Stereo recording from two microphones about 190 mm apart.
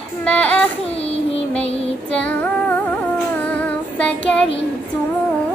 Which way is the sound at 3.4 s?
10° left (ahead or behind).